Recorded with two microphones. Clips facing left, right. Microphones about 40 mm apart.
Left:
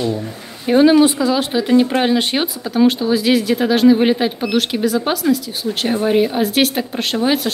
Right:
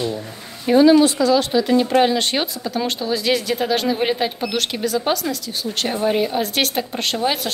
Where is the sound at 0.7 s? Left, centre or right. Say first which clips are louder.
Left 1 dB; centre.